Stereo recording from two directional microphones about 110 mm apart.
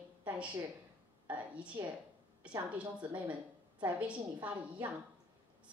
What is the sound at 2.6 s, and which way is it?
A woman's voice, 10° right (ahead or behind).